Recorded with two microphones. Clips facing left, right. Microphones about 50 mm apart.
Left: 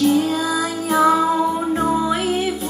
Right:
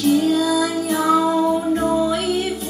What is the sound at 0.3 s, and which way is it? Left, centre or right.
Music, left.